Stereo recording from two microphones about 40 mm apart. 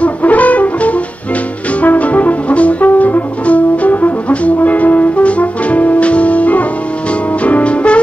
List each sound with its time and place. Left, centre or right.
0.0 s brass instrument: left
7.4 s music: left